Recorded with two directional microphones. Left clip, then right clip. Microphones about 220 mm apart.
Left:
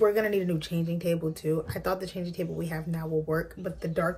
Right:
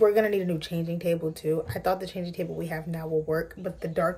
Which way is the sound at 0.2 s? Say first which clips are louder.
Right 2 dB; 15° right (ahead or behind).